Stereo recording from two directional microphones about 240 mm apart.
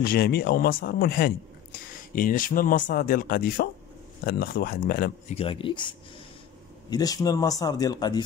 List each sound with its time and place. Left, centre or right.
0.0 s a man's voice: left
5.3 s speech: left